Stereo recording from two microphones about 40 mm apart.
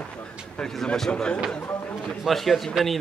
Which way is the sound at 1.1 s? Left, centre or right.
Left.